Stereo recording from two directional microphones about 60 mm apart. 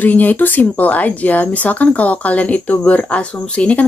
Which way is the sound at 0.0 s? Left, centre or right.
Left.